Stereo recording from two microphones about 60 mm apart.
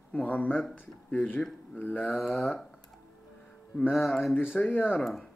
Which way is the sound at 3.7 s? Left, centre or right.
Left.